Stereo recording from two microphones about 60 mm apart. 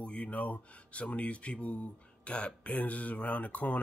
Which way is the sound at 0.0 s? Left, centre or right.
Left.